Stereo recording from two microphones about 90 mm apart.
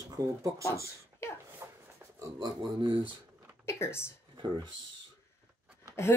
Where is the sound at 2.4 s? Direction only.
65° right (ahead or behind).